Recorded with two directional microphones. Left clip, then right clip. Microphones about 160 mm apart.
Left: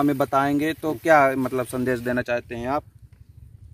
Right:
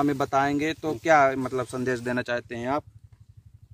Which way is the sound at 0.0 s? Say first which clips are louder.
Left 3 dB; 55° left (ahead or behind).